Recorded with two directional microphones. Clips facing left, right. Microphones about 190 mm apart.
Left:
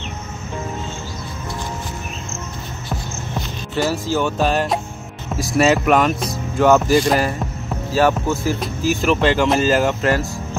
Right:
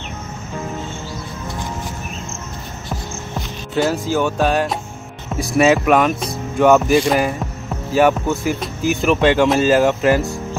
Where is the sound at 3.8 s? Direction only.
15° right (ahead or behind).